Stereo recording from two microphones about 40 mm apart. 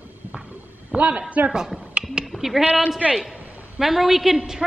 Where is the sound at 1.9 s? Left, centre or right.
Right.